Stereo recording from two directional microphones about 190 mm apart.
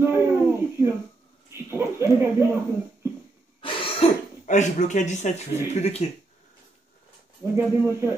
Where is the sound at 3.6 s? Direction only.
30° left (ahead or behind).